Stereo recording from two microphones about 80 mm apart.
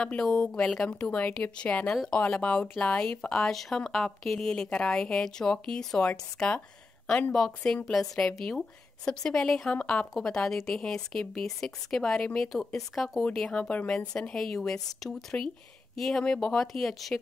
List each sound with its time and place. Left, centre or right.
0.1 s a woman's voice: centre